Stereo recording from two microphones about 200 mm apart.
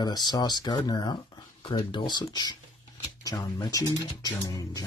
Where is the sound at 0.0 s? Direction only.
20° left (ahead or behind).